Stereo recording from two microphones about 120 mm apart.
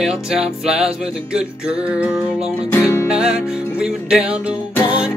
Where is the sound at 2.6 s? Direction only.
20° left (ahead or behind).